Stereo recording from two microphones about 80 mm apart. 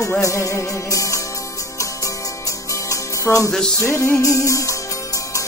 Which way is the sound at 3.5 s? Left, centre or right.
Centre.